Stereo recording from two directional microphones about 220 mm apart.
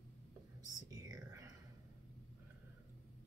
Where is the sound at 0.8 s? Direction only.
15° right (ahead or behind).